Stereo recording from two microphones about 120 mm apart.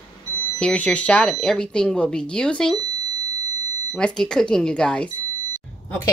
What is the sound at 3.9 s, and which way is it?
A woman's voice, 5° left (ahead or behind).